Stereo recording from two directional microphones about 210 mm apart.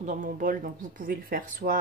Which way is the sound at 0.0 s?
35° right (ahead or behind).